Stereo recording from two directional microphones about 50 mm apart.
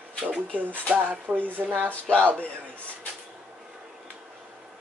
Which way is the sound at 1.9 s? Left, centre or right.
Left.